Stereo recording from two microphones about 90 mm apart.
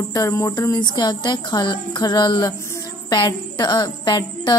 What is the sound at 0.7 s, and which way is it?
A woman's voice, 50° left (ahead or behind).